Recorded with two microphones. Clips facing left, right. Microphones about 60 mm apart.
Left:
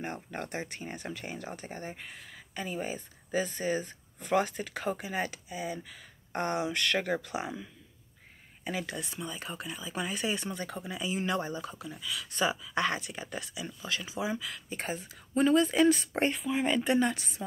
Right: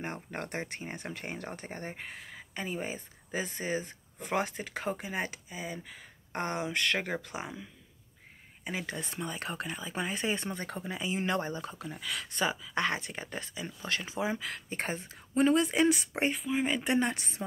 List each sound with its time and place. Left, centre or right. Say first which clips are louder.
0.0 s speech: even; right
2.7 s speech: left 2 dB; centre
8.8 s speech: right 1 dB; right
9.9 s speech: even; right
12.0 s speech: even; right
12.3 s speech: left 2 dB; right
13.7 s speech: right 2 dB; right
15.0 s speech: even; right
16.3 s speech: left 2 dB; centre
16.8 s speech: left 2 dB; right